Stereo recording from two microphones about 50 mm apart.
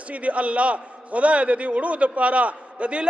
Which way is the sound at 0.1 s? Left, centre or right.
Right.